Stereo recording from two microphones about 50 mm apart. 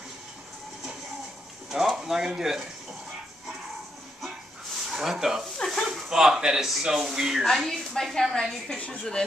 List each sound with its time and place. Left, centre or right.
2.0 s speech: centre
4.8 s speech: centre
5.7 s a sound: centre
6.0 s speech: centre
7.4 s a woman's voice: centre
8.6 s a woman's voice: left